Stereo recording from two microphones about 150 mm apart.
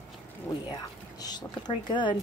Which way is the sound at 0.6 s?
25° left (ahead or behind).